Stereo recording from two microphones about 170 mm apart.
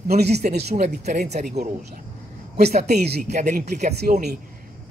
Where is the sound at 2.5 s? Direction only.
70° right (ahead or behind).